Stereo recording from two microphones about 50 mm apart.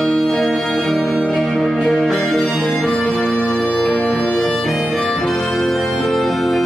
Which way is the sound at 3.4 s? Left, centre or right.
Centre.